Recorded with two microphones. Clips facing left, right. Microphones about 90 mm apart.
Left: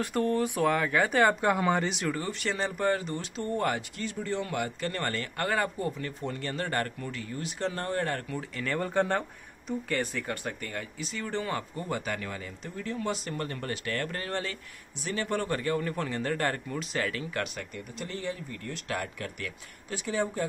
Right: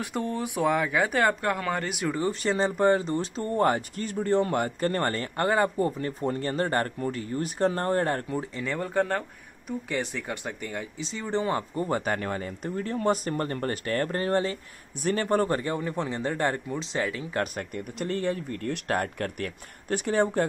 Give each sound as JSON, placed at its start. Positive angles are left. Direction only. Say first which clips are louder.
{"t": 0.0, "sound": "speech", "louder": "left 3 dB", "side_deg": -15}
{"t": 1.9, "sound": "speech", "louder": "right 2 dB", "side_deg": -10}
{"t": 2.2, "sound": "speech", "louder": "right 6 dB", "side_deg": -30}
{"t": 8.7, "sound": "speech", "louder": "right 1 dB", "side_deg": 0}
{"t": 9.7, "sound": "speech", "louder": "right 1 dB", "side_deg": -15}
{"t": 12.0, "sound": "speech", "louder": "right 6 dB", "side_deg": -45}
{"t": 15.0, "sound": "speech", "louder": "right 6 dB", "side_deg": -55}
{"t": 15.2, "sound": "speech", "louder": "right 3 dB", "side_deg": -35}
{"t": 17.4, "sound": "speech", "louder": "right 5 dB", "side_deg": -45}
{"t": 17.9, "sound": "speech", "louder": "right 7 dB", "side_deg": -55}